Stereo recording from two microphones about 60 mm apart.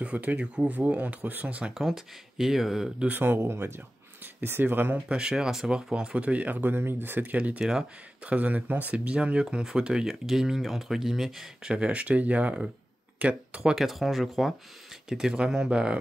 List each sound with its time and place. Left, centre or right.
0.0 s speech: right
1.7 s speech: centre
3.1 s speech: right
4.9 s speech: centre
11.7 s speech: centre
13.7 s speech: centre